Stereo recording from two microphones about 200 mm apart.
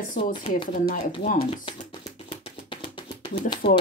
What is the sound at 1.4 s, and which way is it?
Music, 25° left (ahead or behind).